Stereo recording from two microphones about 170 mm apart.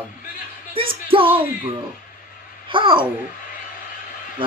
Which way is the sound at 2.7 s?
30° right (ahead or behind).